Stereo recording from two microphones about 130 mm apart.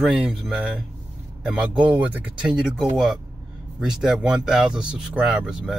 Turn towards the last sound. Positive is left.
turn(degrees=-5)  # may be behind; listen again after turning